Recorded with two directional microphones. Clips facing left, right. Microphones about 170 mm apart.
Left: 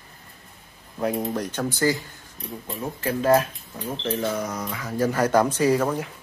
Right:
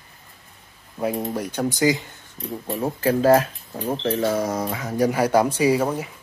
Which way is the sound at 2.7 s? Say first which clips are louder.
Right 6 dB; 35° right (ahead or behind).